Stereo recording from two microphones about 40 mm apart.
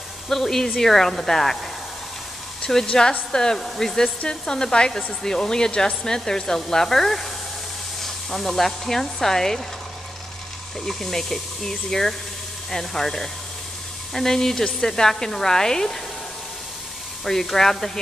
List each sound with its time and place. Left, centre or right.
0.3 s speech: centre
2.6 s speech: centre
2.9 s a woman's voice: left
8.3 s speech: centre
10.9 s speech: centre
17.2 s speech: centre